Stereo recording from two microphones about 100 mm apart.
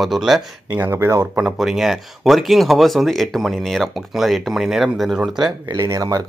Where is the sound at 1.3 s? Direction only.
5° right (ahead or behind).